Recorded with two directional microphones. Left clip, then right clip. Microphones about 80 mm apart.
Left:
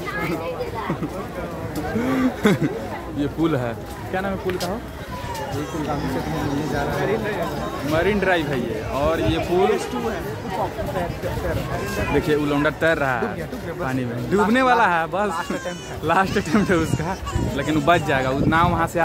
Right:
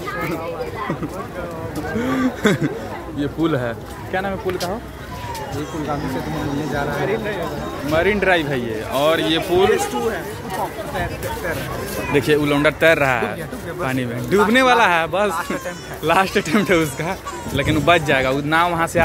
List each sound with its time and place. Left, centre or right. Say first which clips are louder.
2.0 s speech: right 1 dB; centre
7.0 s a man's voice: right 1 dB; centre
12.1 s a man's voice: right 4 dB; centre
14.5 s a man's voice: right 3 dB; centre